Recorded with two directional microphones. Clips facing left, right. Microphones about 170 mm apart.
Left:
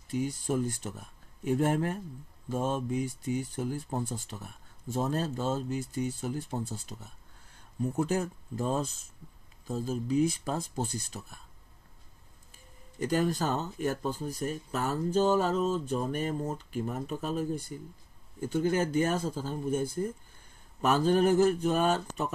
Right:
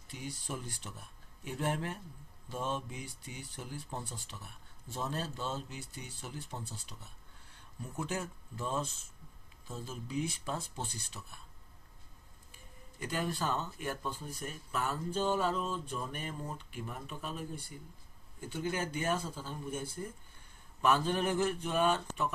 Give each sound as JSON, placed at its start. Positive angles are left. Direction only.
{"t": 0.1, "sound": "speech", "side_deg": 45}
{"t": 13.0, "sound": "speech", "side_deg": 40}